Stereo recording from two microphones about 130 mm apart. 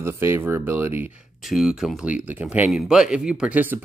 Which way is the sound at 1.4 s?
5° right (ahead or behind).